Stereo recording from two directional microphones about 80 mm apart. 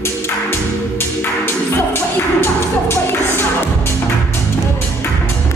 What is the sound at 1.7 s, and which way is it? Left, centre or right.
Music, left.